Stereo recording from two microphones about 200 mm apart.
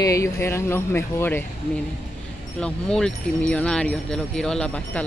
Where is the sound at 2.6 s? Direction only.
5° left (ahead or behind).